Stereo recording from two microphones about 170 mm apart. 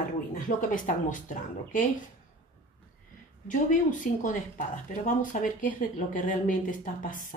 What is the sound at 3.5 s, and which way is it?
Speech, 50° left (ahead or behind).